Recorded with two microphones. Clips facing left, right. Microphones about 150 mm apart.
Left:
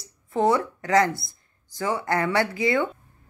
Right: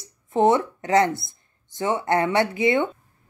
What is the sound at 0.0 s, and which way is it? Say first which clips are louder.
A woman's voice: right 3 dB; 20° right (ahead or behind).